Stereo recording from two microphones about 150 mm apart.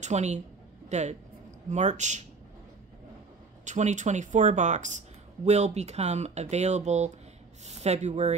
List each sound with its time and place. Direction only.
0.0 s a woman's voice: 50° right (ahead or behind)
3.6 s speech: 50° right (ahead or behind)